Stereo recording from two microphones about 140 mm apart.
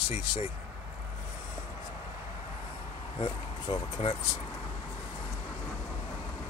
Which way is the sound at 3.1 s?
35° left (ahead or behind).